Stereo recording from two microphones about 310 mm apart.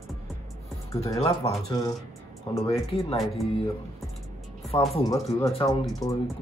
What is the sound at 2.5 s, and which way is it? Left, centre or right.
Speech, centre.